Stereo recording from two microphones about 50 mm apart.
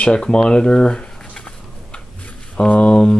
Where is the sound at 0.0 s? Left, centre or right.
Centre.